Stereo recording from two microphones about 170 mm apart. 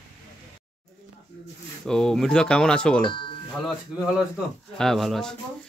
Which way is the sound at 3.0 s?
30° left (ahead or behind).